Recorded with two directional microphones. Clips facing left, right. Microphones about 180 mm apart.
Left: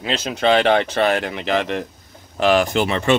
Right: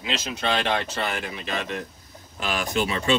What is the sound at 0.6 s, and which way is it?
Speech, 65° left (ahead or behind).